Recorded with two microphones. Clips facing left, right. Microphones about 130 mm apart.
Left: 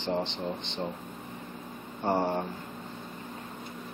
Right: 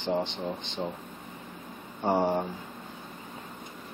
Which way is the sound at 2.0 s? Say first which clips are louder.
Right 2 dB; 5° right (ahead or behind).